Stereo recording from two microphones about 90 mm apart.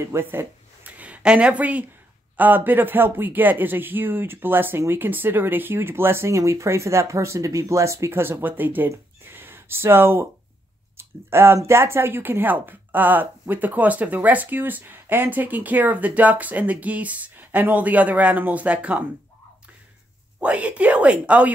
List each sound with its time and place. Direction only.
0.0 s speech: 25° right (ahead or behind)
8.9 s a sound: 25° right (ahead or behind)
11.0 s speech: 25° right (ahead or behind)
20.3 s speech: 15° right (ahead or behind)